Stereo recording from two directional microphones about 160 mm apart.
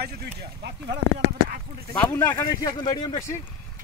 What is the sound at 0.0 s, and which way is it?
Speech, 90° right.